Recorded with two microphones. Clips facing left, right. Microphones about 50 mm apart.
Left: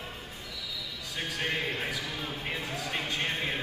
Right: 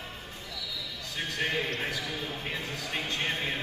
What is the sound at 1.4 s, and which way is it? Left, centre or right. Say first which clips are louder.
Speech: right 2 dB; centre.